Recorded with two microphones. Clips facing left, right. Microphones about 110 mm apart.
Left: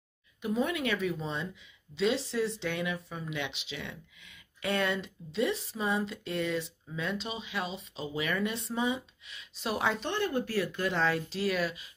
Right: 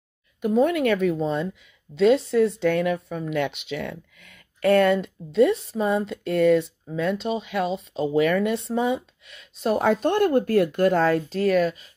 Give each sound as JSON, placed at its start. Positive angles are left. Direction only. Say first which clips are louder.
{"t": 0.4, "sound": "speech", "louder": "right 10 dB", "side_deg": -45}